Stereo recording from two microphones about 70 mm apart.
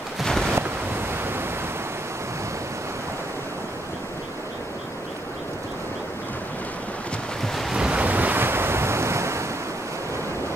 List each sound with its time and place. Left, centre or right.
0.2 s a sound: centre
0.6 s waves: right
7.7 s waves: centre
8.0 s waves: right